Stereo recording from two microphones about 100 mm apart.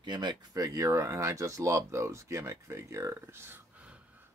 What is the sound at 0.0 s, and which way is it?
Speech, 50° right (ahead or behind).